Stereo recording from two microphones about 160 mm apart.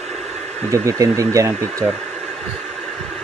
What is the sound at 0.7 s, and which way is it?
Speech, 20° right (ahead or behind).